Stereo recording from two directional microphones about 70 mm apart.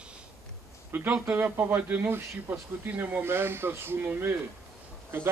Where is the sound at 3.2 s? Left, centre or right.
Right.